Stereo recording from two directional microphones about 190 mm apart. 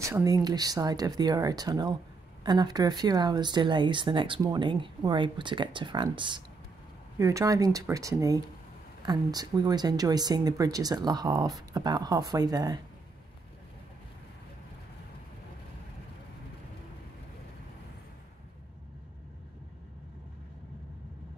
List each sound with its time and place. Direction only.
0.0 s speech: 15° right (ahead or behind)